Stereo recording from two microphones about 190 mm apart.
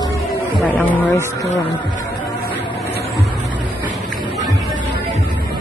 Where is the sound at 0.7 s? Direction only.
10° left (ahead or behind).